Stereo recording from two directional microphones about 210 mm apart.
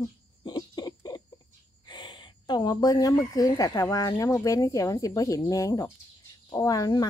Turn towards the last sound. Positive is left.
turn(degrees=15)  # may be behind; listen again after turning